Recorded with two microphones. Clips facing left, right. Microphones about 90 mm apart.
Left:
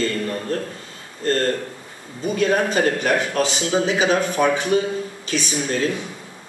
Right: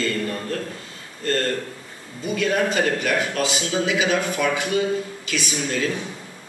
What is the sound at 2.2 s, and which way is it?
A man's voice, 35° left (ahead or behind).